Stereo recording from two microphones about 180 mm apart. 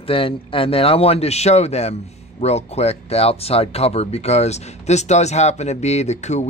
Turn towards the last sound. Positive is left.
turn(degrees=40)  # may be behind; listen again after turning